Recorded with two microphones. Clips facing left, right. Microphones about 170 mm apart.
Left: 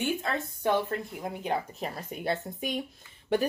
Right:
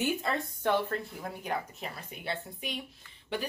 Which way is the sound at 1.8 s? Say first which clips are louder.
Left 6 dB; 40° left (ahead or behind).